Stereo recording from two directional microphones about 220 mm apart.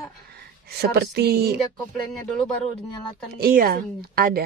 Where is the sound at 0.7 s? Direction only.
45° right (ahead or behind).